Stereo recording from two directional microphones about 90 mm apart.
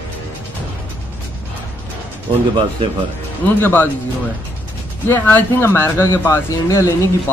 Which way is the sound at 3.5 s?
20° left (ahead or behind).